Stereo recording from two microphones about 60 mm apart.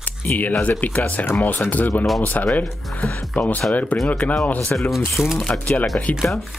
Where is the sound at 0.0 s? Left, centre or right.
Left.